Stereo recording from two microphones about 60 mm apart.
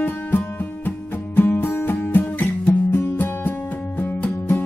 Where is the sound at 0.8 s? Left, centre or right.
Left.